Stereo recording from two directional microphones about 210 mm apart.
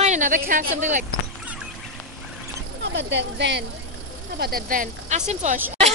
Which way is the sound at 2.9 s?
55° right (ahead or behind).